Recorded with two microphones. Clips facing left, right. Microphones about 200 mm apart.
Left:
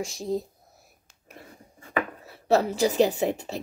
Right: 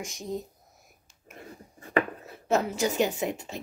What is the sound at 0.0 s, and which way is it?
Speech, 30° left (ahead or behind).